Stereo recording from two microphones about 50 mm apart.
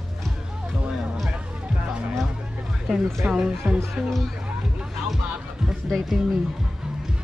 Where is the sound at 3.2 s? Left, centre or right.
Centre.